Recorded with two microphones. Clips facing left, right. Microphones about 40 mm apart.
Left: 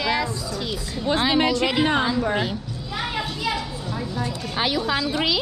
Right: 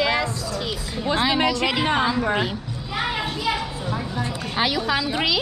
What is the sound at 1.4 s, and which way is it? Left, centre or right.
A woman's voice, right.